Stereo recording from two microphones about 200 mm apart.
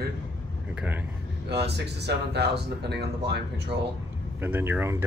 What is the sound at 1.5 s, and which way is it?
Speech, 55° right (ahead or behind).